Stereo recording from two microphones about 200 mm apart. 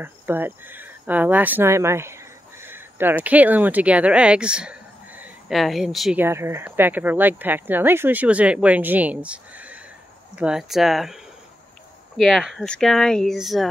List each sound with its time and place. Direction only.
0.0 s speech: 10° right (ahead or behind)
12.2 s speech: centre (ahead or behind)